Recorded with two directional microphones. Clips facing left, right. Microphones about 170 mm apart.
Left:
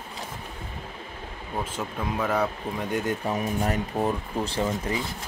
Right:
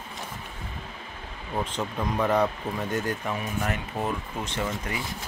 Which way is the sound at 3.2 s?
35° left (ahead or behind).